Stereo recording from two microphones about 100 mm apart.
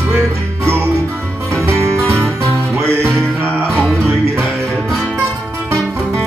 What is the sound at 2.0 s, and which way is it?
Music, 10° left (ahead or behind).